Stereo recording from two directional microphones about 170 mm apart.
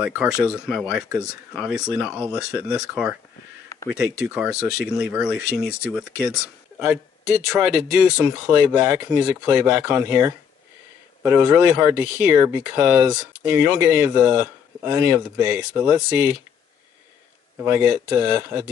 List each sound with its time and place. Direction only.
0.0 s speech: 5° right (ahead or behind)
3.7 s a sound: 15° left (ahead or behind)
4.2 s speech: 5° right (ahead or behind)
6.8 s speech: 5° right (ahead or behind)
17.6 s speech: 10° right (ahead or behind)